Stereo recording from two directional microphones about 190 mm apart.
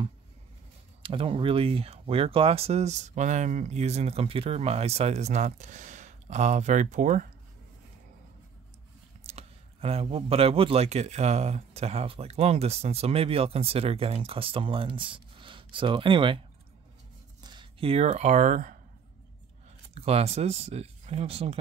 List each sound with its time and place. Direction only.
1.0 s speech: 30° right (ahead or behind)
9.2 s speech: 35° right (ahead or behind)
17.4 s speech: 25° right (ahead or behind); by 18.8 s 45° right (ahead or behind)
19.9 s speech: 35° right (ahead or behind)